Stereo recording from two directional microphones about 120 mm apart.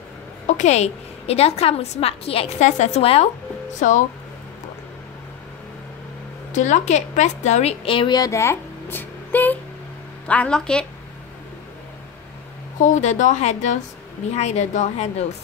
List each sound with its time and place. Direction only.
0.5 s a woman's voice: 80° left; by 2.5 s 55° left (ahead or behind)
2.6 s a woman's voice: 70° left (ahead or behind)
6.5 s a woman's voice: 90° left
7.8 s speech: 45° left (ahead or behind)
8.2 s a sound: 25° left (ahead or behind)
10.2 s a woman's voice: 10° left (ahead or behind)
12.7 s a woman's voice: 85° left